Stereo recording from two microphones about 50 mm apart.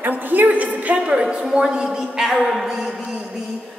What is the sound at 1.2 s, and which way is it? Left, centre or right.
Speech, centre.